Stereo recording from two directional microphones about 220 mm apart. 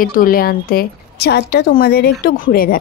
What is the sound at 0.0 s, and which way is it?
A woman's voice, 40° left (ahead or behind).